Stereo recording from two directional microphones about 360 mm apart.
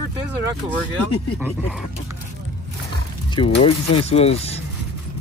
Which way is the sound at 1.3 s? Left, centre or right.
Centre.